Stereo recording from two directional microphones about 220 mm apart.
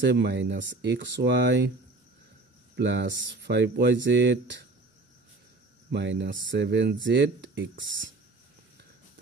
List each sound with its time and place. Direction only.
0.0 s speech: 50° right (ahead or behind)
2.7 s speech: 55° right (ahead or behind)
5.9 s speech: 50° right (ahead or behind)